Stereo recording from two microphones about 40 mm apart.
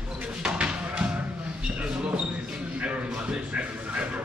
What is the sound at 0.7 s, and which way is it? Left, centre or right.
Music, right.